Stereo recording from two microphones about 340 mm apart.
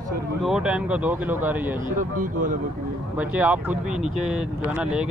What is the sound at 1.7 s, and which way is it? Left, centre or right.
Speech, right.